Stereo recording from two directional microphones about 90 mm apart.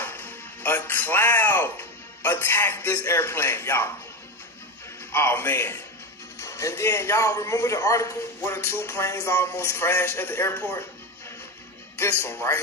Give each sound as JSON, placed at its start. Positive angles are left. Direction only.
{"t": 0.0, "sound": "speech", "side_deg": 25}
{"t": 5.1, "sound": "a man's voice", "side_deg": 25}
{"t": 12.0, "sound": "a man's voice", "side_deg": 30}